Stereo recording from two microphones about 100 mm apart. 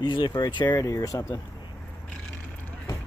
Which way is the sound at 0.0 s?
50° left (ahead or behind).